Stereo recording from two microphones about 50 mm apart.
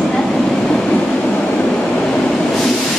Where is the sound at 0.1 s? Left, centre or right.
Centre.